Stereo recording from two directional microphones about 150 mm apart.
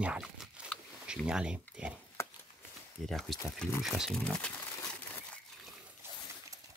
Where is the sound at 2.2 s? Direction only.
20° left (ahead or behind).